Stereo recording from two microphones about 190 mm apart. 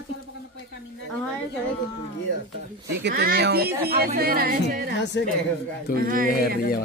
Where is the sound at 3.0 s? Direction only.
55° right (ahead or behind).